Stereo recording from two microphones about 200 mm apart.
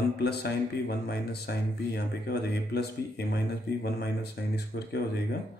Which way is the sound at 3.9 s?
55° left (ahead or behind).